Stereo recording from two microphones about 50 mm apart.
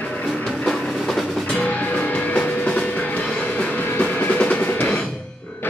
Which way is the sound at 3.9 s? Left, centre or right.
Left.